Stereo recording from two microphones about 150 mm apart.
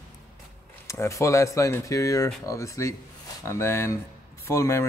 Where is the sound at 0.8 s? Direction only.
20° left (ahead or behind).